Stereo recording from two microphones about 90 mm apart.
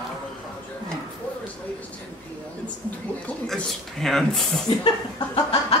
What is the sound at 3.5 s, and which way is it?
Speech, 5° left (ahead or behind).